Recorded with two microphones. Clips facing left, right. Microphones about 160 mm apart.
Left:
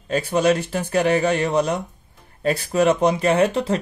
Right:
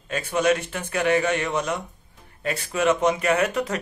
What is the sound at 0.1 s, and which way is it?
Speech, 35° left (ahead or behind).